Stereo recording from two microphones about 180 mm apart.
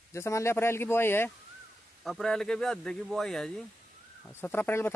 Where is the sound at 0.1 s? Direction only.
15° left (ahead or behind).